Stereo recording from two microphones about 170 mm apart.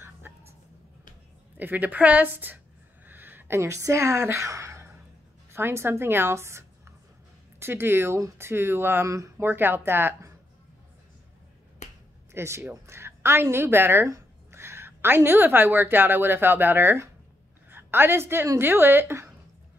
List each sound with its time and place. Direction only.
0.2 s a sound: 15° right (ahead or behind)
1.6 s speech: 10° right (ahead or behind)
3.1 s a sound: 10° right (ahead or behind)
5.5 s speech: 15° right (ahead or behind)
11.8 s finger snapping: 45° left (ahead or behind)
12.3 s a woman's voice: 15° right (ahead or behind)